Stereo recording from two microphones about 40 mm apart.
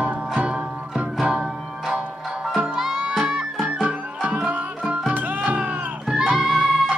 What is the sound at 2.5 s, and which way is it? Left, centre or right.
Music, centre.